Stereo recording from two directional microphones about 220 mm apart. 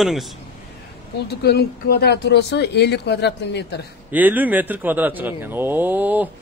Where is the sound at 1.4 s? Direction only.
45° left (ahead or behind).